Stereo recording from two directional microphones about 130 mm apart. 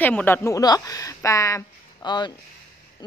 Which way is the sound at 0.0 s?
15° left (ahead or behind).